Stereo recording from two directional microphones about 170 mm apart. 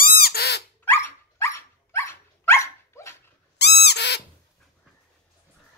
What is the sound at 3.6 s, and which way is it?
Owl, 80° left.